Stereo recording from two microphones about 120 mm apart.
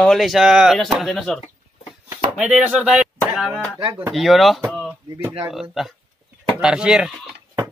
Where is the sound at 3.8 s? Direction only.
45° right (ahead or behind).